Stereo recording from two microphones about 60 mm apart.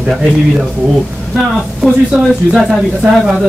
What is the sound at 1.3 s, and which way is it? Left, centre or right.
Speech, centre.